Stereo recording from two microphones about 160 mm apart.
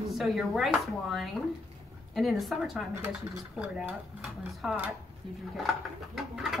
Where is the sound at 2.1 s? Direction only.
Centre (ahead or behind).